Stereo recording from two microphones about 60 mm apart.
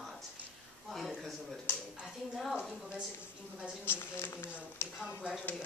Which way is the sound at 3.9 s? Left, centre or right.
Left.